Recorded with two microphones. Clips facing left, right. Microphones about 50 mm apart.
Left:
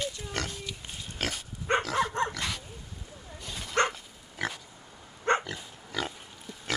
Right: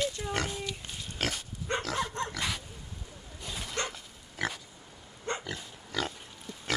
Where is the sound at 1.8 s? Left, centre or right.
Centre.